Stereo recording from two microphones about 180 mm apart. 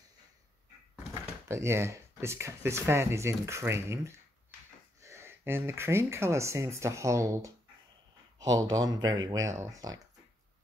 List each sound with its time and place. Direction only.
1.5 s speech: 15° right (ahead or behind)